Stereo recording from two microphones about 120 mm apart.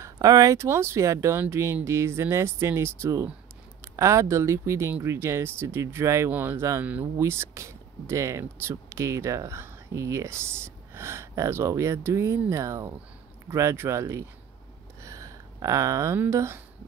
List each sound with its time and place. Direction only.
0.0 s speech: 30° right (ahead or behind)